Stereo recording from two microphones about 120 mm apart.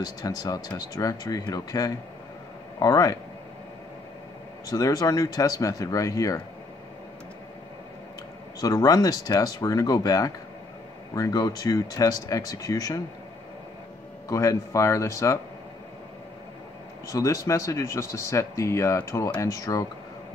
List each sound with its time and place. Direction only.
0.0 s speech: 35° left (ahead or behind)
4.6 s speech: 30° left (ahead or behind)
8.5 s speech: 30° left (ahead or behind)
14.3 s speech: 25° left (ahead or behind)
17.1 s speech: 30° left (ahead or behind)